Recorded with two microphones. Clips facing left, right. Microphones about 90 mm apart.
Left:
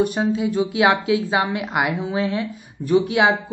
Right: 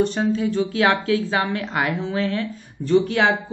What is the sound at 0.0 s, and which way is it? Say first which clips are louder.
Speech: even; 15° left (ahead or behind).